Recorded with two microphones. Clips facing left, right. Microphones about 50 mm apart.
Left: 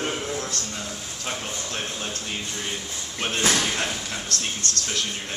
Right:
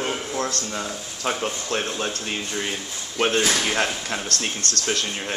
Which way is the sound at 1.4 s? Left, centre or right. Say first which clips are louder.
Right 6 dB; right.